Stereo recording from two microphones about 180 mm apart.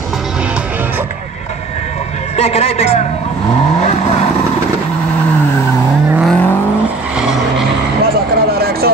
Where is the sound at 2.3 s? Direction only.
35° left (ahead or behind).